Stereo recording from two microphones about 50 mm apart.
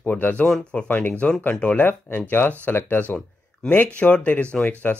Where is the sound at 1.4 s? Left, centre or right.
Left.